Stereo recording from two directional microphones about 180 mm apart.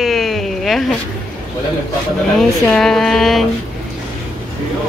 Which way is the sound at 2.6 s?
5° left (ahead or behind).